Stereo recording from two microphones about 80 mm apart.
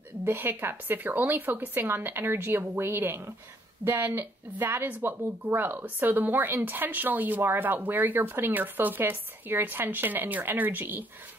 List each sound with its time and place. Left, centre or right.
0.2 s speech: right